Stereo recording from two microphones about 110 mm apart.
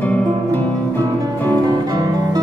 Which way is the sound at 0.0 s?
15° left (ahead or behind).